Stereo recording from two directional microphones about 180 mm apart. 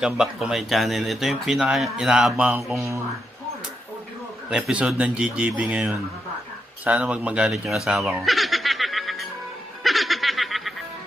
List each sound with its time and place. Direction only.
0.0 s speech: 5° right (ahead or behind)
4.5 s speech: 5° right (ahead or behind)
9.8 s snicker: centre (ahead or behind)